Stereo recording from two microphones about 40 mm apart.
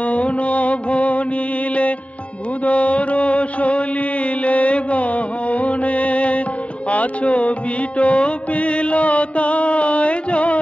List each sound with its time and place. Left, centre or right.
0.0 s mantra: left
2.6 s mantra: left
6.9 s music: left